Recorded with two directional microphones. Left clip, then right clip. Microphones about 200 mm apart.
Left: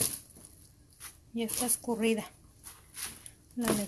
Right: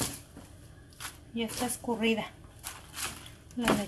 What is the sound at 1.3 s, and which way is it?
Speech, 40° left (ahead or behind).